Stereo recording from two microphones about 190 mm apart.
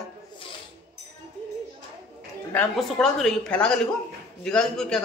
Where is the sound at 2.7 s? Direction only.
Centre (ahead or behind).